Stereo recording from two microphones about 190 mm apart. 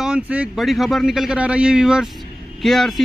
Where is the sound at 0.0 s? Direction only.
5° right (ahead or behind).